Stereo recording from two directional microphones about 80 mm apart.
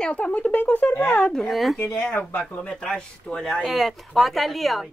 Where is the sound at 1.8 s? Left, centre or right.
Centre.